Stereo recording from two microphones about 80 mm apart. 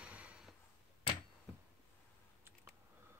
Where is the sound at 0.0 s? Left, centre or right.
Centre.